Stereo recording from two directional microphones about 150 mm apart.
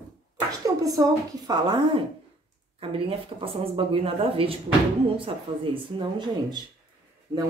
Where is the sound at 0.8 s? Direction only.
25° right (ahead or behind).